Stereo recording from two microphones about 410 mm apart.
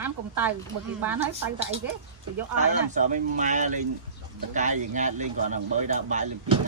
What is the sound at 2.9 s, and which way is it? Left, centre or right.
A man's voice, centre.